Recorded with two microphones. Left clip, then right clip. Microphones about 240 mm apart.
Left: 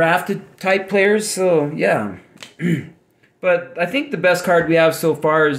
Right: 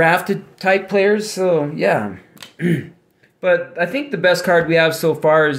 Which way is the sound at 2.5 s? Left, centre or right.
Centre.